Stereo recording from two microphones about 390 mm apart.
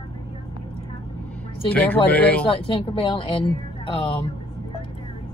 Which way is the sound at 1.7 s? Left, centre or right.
Centre.